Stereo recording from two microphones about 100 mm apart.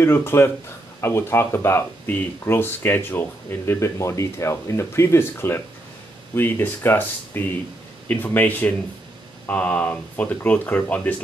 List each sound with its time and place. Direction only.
0.0 s speech: 25° left (ahead or behind)